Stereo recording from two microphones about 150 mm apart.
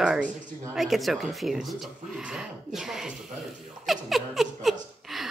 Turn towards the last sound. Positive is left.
turn(degrees=0)  # may be behind; listen again after turning